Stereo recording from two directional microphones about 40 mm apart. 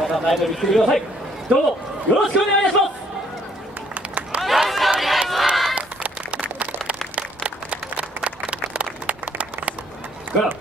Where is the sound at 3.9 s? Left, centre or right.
Right.